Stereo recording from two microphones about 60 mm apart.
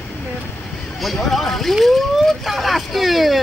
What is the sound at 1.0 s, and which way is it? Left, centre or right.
Speech, centre.